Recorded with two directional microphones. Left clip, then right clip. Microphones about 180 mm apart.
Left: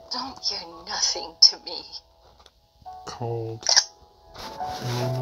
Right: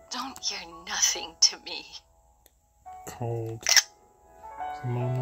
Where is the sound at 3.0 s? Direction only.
30° right (ahead or behind).